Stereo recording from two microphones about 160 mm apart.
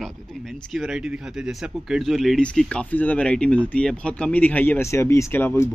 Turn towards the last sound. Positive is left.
turn(degrees=15)  # may be behind; listen again after turning